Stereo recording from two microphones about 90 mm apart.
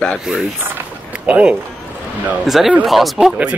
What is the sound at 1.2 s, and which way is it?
Speech, 15° right (ahead or behind).